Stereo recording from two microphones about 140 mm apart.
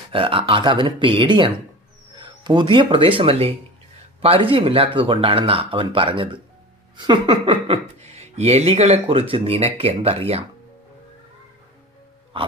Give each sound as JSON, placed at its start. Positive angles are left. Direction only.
{"t": 0.1, "sound": "speech", "side_deg": -40}
{"t": 8.0, "sound": "speech", "side_deg": -50}